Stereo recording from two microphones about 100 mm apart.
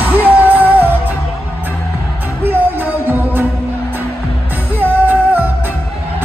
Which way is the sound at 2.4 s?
20° right (ahead or behind).